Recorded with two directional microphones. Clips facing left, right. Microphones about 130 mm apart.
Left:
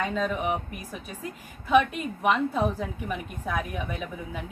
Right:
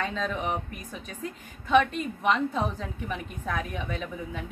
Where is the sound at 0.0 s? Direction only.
10° left (ahead or behind).